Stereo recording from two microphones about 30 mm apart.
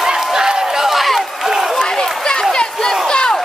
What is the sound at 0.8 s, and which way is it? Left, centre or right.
Run, centre.